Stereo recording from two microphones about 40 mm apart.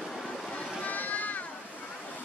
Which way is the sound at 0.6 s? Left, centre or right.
Left.